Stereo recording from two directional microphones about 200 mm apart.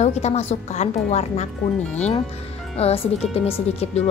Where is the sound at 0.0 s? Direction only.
35° left (ahead or behind).